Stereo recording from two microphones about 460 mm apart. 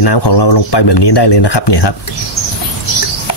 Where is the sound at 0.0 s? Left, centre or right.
Left.